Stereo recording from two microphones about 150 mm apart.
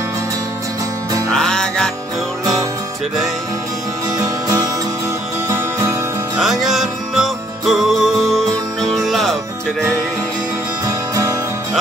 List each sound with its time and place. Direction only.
1.3 s music: 5° left (ahead or behind)
5.5 s music: 15° right (ahead or behind)
6.4 s music: centre (ahead or behind)
10.9 s music: 20° right (ahead or behind)